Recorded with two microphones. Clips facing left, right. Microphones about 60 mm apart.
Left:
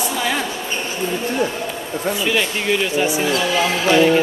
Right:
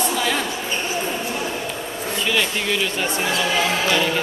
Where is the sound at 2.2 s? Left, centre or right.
Centre.